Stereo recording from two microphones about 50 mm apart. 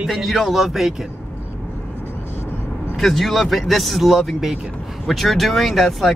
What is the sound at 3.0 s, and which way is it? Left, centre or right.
Speech, centre.